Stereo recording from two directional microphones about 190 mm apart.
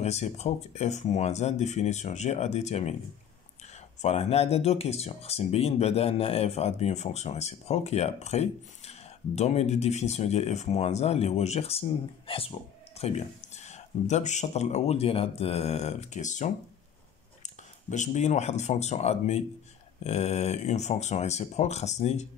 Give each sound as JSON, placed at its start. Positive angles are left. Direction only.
{"t": 0.0, "sound": "speech", "side_deg": 35}
{"t": 4.0, "sound": "speech", "side_deg": 35}
{"t": 17.8, "sound": "speech", "side_deg": 40}